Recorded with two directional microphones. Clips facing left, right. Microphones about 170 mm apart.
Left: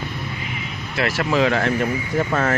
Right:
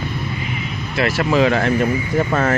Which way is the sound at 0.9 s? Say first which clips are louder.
Right 3 dB; centre (ahead or behind).